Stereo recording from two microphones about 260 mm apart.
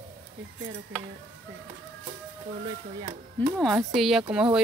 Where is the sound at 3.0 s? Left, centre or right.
Right.